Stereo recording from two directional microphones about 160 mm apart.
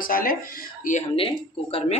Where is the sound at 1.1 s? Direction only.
35° left (ahead or behind).